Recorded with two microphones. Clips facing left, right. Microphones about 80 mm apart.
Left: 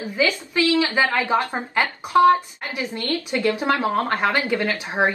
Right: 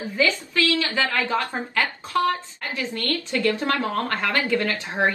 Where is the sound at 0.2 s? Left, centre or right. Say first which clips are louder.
Left 2 dB; centre.